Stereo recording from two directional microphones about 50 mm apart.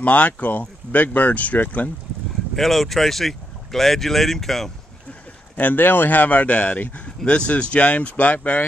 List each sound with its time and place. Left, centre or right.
0.0 s speech: left
2.5 s speech: centre
5.6 s speech: left